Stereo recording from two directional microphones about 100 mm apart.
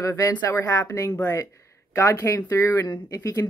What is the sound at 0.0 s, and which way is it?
Speech, 30° left (ahead or behind).